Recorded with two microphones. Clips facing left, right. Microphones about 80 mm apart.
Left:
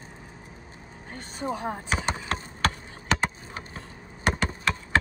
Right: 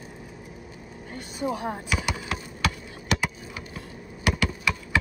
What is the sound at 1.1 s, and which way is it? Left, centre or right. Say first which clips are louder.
Speech: right 2 dB; left.